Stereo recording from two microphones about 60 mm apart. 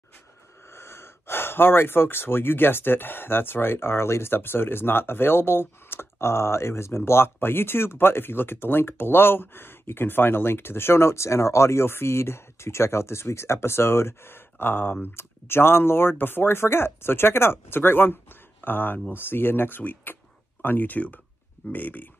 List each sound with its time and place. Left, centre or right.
0.7 s speech: left